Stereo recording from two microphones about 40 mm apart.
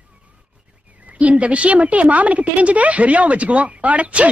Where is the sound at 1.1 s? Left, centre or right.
Right.